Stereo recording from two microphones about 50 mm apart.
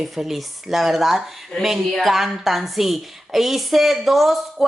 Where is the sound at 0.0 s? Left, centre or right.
Centre.